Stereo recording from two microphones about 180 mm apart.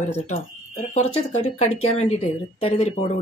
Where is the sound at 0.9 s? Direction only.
35° left (ahead or behind).